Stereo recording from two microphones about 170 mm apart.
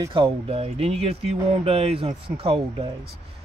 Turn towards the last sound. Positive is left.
turn(degrees=-35)  # may be behind; listen again after turning